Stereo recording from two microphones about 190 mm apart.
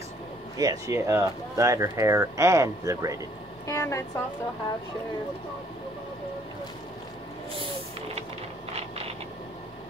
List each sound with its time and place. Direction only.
0.6 s speech: 20° right (ahead or behind)
3.6 s a woman's voice: 15° left (ahead or behind)